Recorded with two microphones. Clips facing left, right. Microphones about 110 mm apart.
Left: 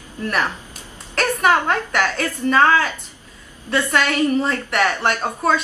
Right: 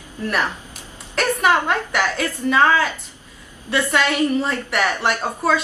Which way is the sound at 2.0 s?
10° right (ahead or behind).